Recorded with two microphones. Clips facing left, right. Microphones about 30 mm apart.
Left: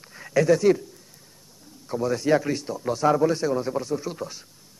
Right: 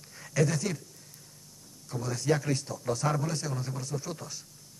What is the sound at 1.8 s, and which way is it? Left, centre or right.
A man's voice, left.